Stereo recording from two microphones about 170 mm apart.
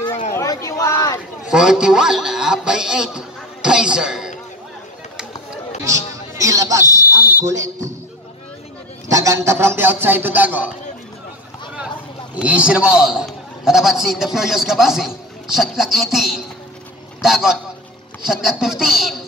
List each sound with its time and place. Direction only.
0.3 s a sound: 20° left (ahead or behind)
1.5 s a man's voice: 5° right (ahead or behind)
5.9 s a sound: 20° right (ahead or behind)
7.1 s fire alarm: 10° right (ahead or behind)
9.1 s a man's voice: 20° right (ahead or behind)
12.4 s a man's voice: 5° right (ahead or behind)